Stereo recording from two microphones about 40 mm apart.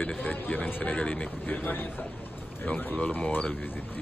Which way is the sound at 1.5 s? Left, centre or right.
Left.